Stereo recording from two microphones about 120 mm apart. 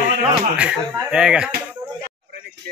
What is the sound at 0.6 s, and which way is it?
Speech, 10° right (ahead or behind).